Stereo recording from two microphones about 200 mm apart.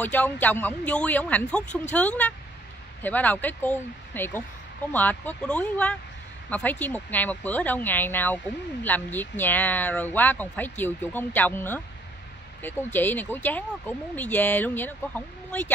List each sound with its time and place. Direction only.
0.0 s speech: 10° left (ahead or behind)